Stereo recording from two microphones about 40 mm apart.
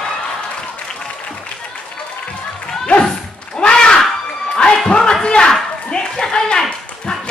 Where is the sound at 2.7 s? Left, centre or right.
Centre.